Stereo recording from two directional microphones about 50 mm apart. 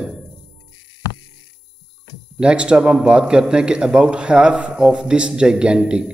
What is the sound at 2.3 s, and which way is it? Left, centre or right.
A man's voice, right.